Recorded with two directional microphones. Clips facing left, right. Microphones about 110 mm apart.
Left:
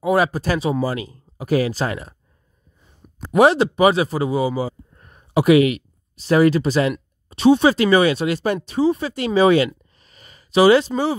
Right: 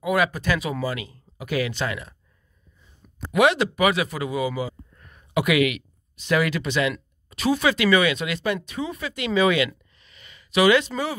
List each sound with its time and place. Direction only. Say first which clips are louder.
0.0 s speech: left 4 dB; 35° left (ahead or behind)
3.3 s speech: left 5 dB; 35° left (ahead or behind)
9.9 s a sound: left 2 dB; 40° left (ahead or behind)